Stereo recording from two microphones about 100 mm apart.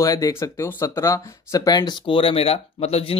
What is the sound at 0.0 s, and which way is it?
Speech, 35° left (ahead or behind).